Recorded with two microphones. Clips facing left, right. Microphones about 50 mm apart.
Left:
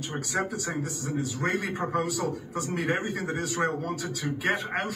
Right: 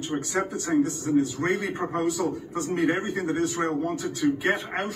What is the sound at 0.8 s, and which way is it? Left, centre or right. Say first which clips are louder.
A man's voice: right 8 dB; right.